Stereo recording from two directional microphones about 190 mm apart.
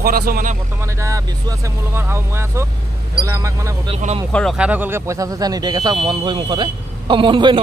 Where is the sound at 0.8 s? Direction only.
15° right (ahead or behind).